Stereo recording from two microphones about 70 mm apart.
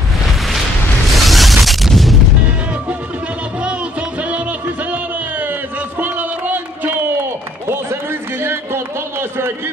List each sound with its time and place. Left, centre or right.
1.1 s a sound: centre
4.2 s music: right
7.7 s run: right